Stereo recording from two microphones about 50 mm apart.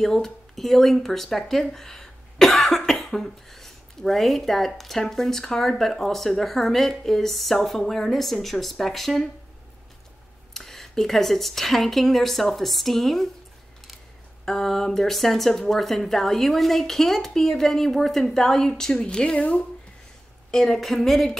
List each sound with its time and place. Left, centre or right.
0.0 s speech: centre
10.5 s speech: centre
14.4 s a woman's voice: centre
20.5 s speech: centre